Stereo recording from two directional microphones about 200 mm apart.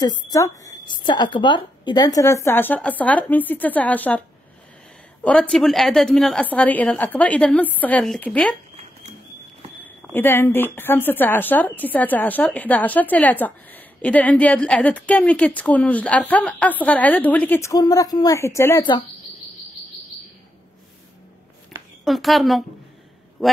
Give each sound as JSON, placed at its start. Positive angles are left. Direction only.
{"t": 0.0, "sound": "a woman's voice", "side_deg": 20}
{"t": 5.2, "sound": "a woman's voice", "side_deg": 5}
{"t": 9.8, "sound": "a woman's voice", "side_deg": 10}
{"t": 22.0, "sound": "a woman's voice", "side_deg": 0}
{"t": 23.4, "sound": "a sound", "side_deg": 0}